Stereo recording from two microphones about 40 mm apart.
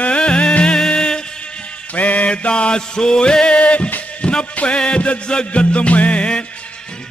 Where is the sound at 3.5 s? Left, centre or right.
Left.